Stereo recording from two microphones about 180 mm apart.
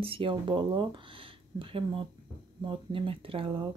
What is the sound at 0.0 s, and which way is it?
Speech, 30° right (ahead or behind).